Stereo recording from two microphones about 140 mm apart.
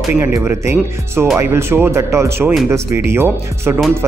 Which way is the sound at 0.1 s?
20° right (ahead or behind).